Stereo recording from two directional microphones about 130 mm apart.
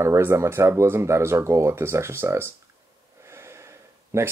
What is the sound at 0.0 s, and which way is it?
Speech, 20° right (ahead or behind).